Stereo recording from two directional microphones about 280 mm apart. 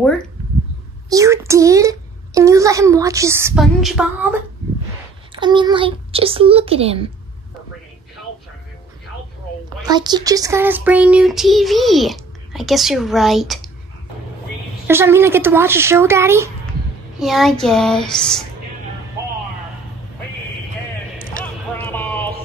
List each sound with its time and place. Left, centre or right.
1.1 s a child's voice: centre
5.3 s a child's voice: centre
9.8 s speech: centre
14.9 s a child's voice: centre
21.7 s a sound: centre